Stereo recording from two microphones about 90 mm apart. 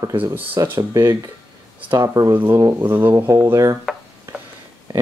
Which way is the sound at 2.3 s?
25° right (ahead or behind).